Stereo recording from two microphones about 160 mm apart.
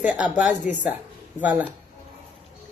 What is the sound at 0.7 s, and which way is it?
Speech, 50° left (ahead or behind).